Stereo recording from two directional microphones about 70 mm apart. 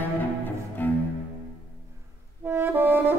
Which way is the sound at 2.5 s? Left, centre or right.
Right.